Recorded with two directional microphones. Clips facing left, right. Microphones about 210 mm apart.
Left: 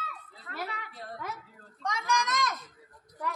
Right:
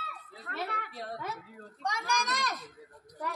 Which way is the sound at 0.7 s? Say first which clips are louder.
Right 3 dB; 60° right (ahead or behind).